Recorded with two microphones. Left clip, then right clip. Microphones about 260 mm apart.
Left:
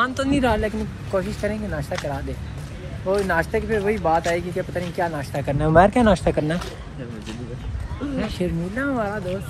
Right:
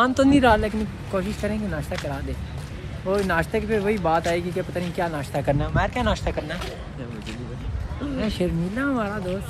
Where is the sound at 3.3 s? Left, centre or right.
Centre.